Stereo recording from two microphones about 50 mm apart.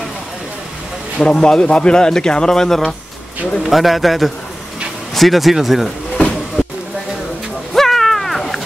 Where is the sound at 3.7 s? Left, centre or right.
Centre.